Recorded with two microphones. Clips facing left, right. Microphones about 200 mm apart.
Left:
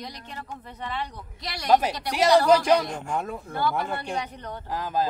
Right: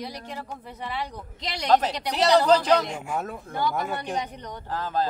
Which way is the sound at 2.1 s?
10° left (ahead or behind).